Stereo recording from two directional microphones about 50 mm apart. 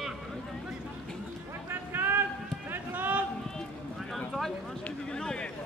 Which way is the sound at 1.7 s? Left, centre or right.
Right.